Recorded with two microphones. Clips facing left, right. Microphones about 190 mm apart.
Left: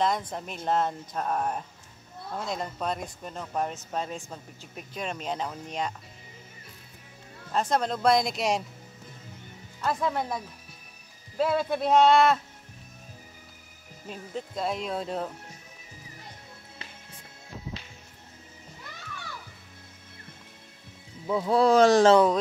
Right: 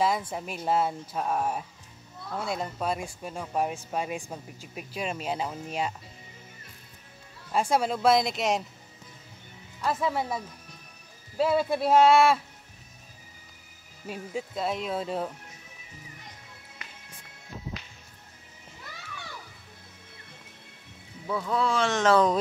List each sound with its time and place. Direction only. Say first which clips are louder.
0.0 s speech: right 1 dB; 5° right (ahead or behind)
7.5 s speech: right 1 dB; 10° right (ahead or behind)
9.8 s speech: even; 5° right (ahead or behind)
14.0 s speech: right 2 dB; 10° right (ahead or behind)
21.3 s speech: left 4 dB; 25° left (ahead or behind)
21.5 s speech: left 9 dB; 40° left (ahead or behind)